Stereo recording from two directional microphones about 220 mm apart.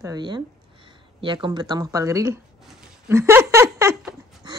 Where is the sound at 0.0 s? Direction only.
20° right (ahead or behind).